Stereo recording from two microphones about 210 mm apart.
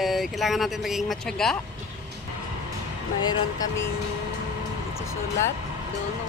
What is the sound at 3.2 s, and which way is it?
Speech, 20° left (ahead or behind).